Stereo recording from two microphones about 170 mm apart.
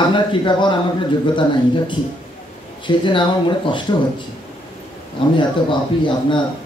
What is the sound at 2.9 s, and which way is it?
Speech, 30° left (ahead or behind).